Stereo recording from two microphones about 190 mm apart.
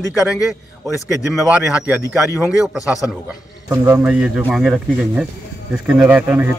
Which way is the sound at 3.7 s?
15° right (ahead or behind).